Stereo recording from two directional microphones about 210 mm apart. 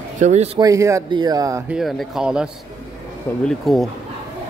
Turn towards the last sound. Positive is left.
turn(degrees=0)  # may be behind; listen again after turning